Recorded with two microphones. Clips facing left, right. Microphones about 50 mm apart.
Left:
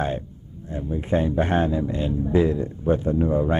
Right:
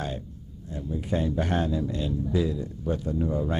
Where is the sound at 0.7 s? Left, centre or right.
Left.